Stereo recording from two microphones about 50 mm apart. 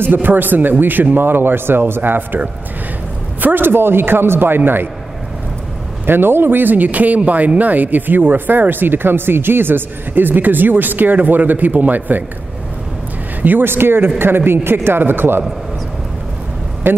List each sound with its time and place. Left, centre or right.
0.0 s speech: right
6.0 s speech: right
13.4 s speech: right
16.8 s speech: right